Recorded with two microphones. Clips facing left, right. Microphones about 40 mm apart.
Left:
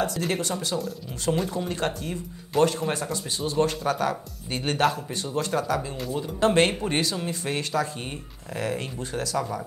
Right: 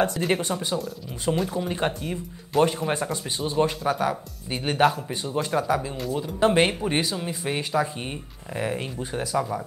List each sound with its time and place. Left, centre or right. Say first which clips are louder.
0.3 s speech: right 3 dB; right
1.3 s speech: right 1 dB; centre
1.7 s speech: right 2 dB; centre
2.5 s speech: right 1 dB; centre
2.9 s speech: right 2 dB; right
3.5 s speech: right 1 dB; centre